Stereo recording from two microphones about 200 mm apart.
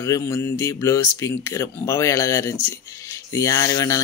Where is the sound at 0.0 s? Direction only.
15° left (ahead or behind).